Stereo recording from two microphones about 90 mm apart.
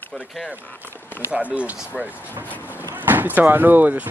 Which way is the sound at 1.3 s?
15° right (ahead or behind).